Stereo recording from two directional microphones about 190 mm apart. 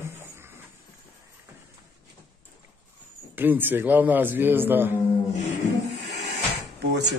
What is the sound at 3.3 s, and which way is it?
A man's voice, 10° right (ahead or behind).